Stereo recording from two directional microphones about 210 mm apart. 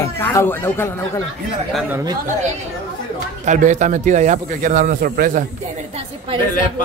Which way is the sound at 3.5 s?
35° right (ahead or behind).